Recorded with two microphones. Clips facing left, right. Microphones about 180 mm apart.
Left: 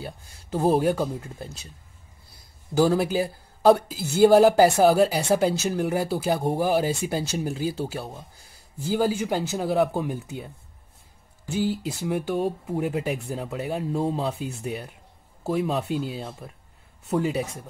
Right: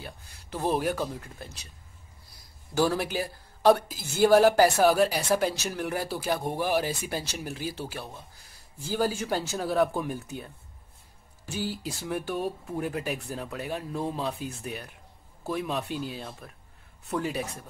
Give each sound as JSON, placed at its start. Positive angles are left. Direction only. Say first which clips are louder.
{"t": 0.6, "sound": "speech", "louder": "left 6 dB", "side_deg": 25}
{"t": 2.9, "sound": "speech", "louder": "left 7 dB", "side_deg": 25}